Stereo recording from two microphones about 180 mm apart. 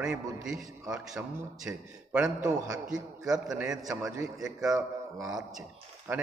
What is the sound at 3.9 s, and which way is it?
Speech, 15° right (ahead or behind).